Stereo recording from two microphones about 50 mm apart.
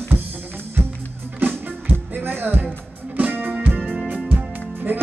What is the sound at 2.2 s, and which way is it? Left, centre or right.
Speech, right.